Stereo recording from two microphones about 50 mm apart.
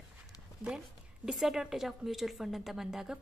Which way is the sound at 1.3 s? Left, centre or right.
Centre.